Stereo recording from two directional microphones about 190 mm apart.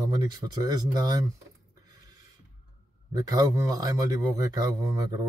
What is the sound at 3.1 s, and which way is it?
Speech, 20° right (ahead or behind).